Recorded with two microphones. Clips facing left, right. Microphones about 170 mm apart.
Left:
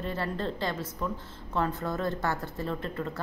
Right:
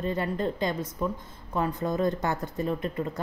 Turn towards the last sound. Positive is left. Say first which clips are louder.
# right 4 dB
turn(degrees=-15)  # may be behind; listen again after turning